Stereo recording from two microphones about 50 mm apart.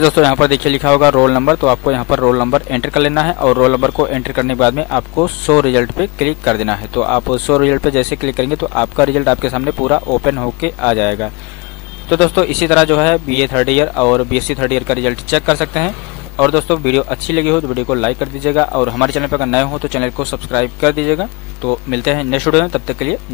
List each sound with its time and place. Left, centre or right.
0.0 s speech: centre